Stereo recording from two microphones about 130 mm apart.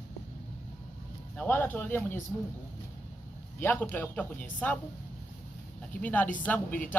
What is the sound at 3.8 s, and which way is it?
Speech, 10° left (ahead or behind).